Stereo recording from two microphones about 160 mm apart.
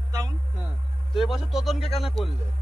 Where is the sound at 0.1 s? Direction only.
20° right (ahead or behind).